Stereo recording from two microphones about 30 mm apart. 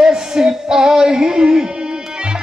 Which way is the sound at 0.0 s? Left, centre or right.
Right.